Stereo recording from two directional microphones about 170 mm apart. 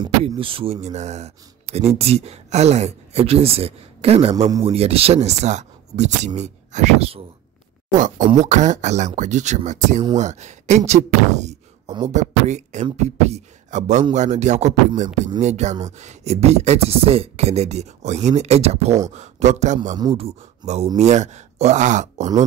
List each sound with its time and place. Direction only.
0.0 s speech: 30° right (ahead or behind)
7.9 s speech: 50° right (ahead or behind)